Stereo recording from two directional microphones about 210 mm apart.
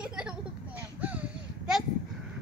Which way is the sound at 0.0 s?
5° right (ahead or behind).